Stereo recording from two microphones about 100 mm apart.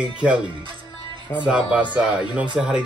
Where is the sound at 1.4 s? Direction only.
5° right (ahead or behind).